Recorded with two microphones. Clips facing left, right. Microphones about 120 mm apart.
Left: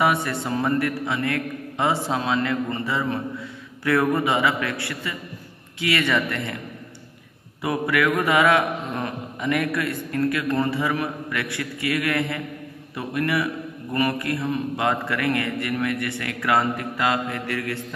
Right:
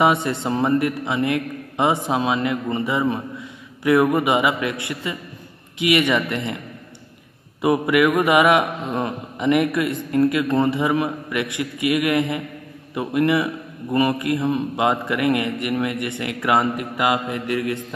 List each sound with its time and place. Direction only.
0.0 s a man's voice: 20° right (ahead or behind)
7.6 s a man's voice: 20° right (ahead or behind)